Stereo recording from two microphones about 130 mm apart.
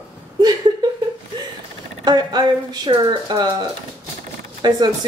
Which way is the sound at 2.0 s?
30° right (ahead or behind).